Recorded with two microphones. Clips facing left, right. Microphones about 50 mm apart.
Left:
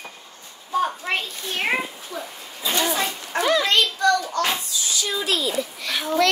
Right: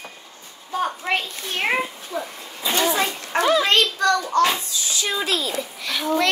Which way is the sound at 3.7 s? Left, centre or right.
Right.